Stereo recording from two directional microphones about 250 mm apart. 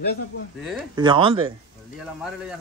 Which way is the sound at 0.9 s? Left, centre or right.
Centre.